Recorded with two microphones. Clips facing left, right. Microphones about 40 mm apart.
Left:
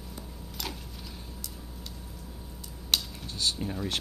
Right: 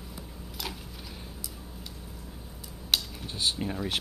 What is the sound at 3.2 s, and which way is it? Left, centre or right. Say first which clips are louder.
Speech: right 1 dB; right.